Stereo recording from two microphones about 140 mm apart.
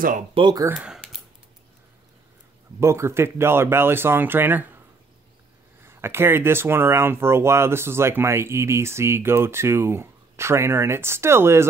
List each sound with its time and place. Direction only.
0.3 s speech: 35° right (ahead or behind)
0.7 s typing: centre (ahead or behind)
2.8 s speech: 20° right (ahead or behind)
5.9 s speech: 15° right (ahead or behind)